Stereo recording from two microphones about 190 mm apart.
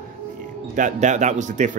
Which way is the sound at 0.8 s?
40° right (ahead or behind).